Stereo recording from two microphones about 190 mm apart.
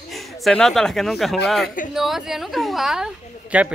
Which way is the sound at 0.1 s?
Centre (ahead or behind).